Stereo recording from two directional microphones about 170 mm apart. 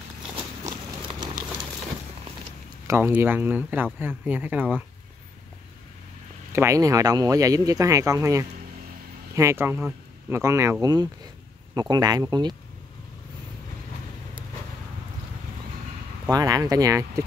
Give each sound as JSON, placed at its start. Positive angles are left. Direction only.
{"t": 1.0, "sound": "horse", "side_deg": -25}
{"t": 2.9, "sound": "speech", "side_deg": -15}
{"t": 6.5, "sound": "speech", "side_deg": -15}
{"t": 16.3, "sound": "speech", "side_deg": -20}